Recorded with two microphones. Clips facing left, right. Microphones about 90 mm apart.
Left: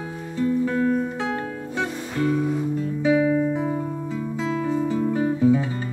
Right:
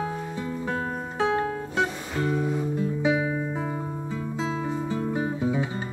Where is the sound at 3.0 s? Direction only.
20° right (ahead or behind).